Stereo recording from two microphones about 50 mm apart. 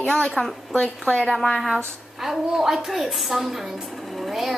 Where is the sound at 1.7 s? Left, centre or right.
Centre.